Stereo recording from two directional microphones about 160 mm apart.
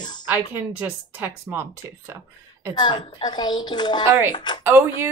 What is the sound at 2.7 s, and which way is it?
Speech, 30° left (ahead or behind).